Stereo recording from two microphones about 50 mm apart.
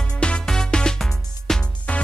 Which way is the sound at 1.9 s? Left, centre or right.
Left.